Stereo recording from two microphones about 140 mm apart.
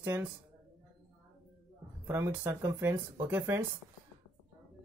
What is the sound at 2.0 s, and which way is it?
Speech, 15° right (ahead or behind).